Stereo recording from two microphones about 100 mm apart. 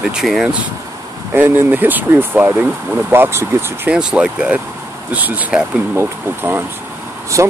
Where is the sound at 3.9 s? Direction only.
10° right (ahead or behind).